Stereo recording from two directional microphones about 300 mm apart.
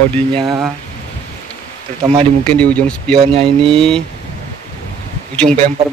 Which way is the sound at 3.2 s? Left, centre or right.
Centre.